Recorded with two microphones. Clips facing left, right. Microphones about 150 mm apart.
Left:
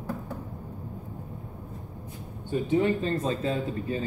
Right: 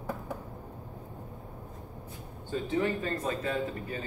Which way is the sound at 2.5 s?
20° left (ahead or behind).